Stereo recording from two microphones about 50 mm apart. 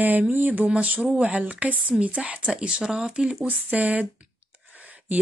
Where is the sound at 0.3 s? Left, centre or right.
Right; by 3.3 s centre.